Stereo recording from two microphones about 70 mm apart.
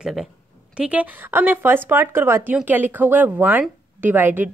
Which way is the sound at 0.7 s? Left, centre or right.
Centre.